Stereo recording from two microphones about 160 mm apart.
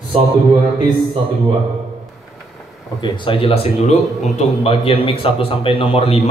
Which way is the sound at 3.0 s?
30° left (ahead or behind).